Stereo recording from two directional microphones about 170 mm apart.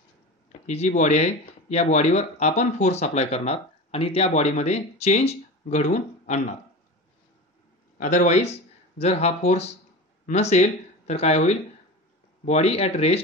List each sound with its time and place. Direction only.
0.5 s speech: 40° left (ahead or behind)
8.0 s speech: 45° left (ahead or behind)